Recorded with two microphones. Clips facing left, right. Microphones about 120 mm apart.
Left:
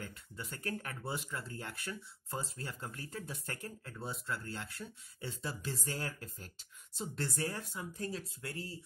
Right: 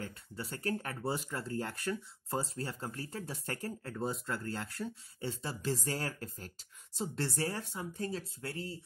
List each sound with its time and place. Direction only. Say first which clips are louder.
0.0 s speech: right 4 dB; 35° right (ahead or behind)